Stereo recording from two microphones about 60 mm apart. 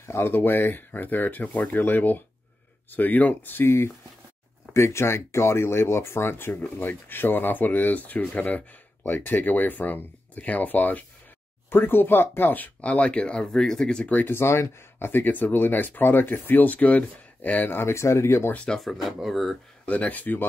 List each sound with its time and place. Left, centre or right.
0.0 s speech: left; by 14.2 s centre
14.2 s speech: left
17.6 s speech: left
18.8 s speech: centre
19.9 s speech: left